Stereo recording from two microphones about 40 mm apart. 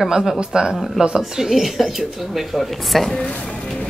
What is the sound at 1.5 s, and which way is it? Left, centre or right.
Speech, centre.